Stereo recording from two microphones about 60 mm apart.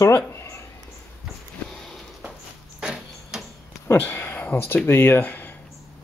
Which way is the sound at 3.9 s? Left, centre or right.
Left.